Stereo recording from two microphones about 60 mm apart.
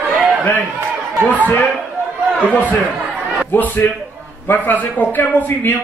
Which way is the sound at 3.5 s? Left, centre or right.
Left.